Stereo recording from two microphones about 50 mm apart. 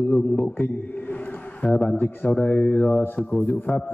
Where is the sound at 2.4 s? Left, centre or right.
Left.